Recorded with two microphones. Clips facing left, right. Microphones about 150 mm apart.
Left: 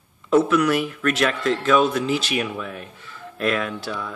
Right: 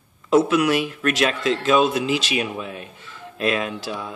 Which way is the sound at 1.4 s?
20° right (ahead or behind).